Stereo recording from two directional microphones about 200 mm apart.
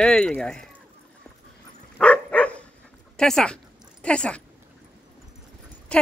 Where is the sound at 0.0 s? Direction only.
5° left (ahead or behind).